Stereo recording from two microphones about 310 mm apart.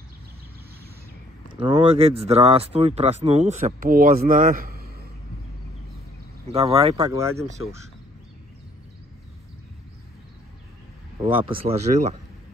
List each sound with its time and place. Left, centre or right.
1.5 s speech: centre
6.4 s speech: centre
11.1 s speech: centre